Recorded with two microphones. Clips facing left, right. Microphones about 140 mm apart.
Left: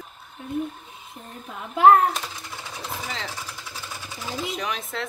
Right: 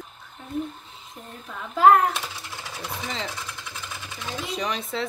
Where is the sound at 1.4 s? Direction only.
15° left (ahead or behind).